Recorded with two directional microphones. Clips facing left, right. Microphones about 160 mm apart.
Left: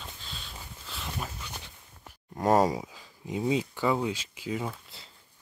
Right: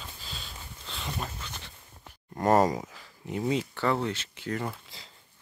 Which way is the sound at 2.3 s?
Centre (ahead or behind).